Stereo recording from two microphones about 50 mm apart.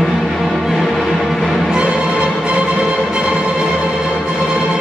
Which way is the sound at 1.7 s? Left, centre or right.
Centre.